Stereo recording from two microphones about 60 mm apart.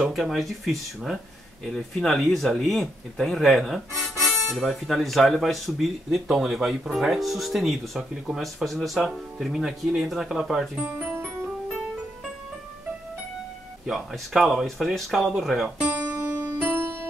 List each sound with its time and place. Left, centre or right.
0.0 s speech: centre
10.8 s music: right
13.8 s speech: centre
15.8 s music: right
16.7 s music: right